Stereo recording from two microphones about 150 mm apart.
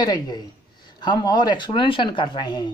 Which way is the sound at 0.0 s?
30° left (ahead or behind).